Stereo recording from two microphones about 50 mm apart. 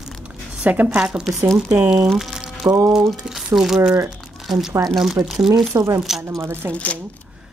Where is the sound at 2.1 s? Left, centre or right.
Centre.